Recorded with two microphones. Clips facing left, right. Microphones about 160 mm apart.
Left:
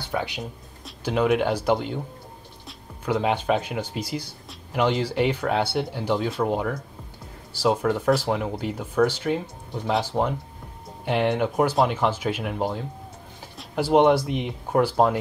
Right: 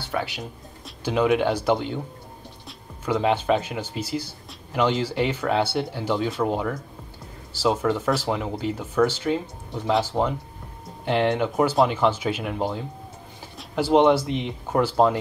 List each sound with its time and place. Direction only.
0.8 s speech: centre (ahead or behind)
4.7 s speech: 5° left (ahead or behind)